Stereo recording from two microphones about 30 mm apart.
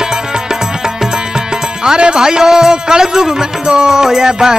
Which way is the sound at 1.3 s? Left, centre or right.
Right.